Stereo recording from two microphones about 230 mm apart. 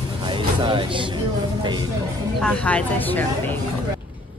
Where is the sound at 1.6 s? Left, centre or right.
Centre.